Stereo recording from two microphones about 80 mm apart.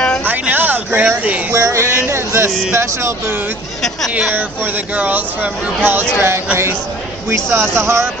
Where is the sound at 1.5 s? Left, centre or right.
Right.